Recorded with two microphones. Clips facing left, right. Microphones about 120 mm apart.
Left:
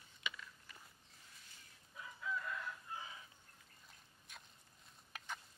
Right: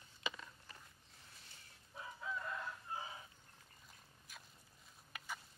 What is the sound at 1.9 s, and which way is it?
Chicken, 30° right (ahead or behind).